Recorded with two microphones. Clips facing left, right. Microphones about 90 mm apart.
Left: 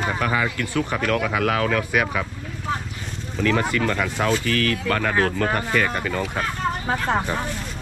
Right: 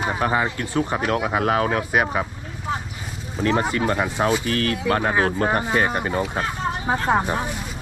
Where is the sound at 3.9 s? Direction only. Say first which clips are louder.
Right 1 dB; 30° right (ahead or behind).